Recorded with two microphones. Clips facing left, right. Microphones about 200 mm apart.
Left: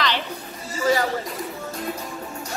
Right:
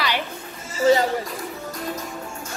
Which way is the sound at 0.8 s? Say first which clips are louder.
Right 4 dB; 25° right (ahead or behind).